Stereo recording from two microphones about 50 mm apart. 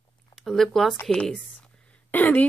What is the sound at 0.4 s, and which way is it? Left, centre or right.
Speech, centre.